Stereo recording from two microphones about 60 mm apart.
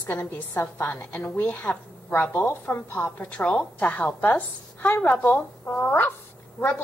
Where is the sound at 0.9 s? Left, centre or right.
Left.